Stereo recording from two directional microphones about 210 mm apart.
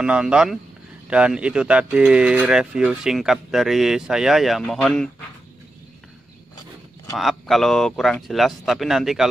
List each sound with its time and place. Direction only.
0.0 s speech: 5° right (ahead or behind)
7.2 s speech: centre (ahead or behind)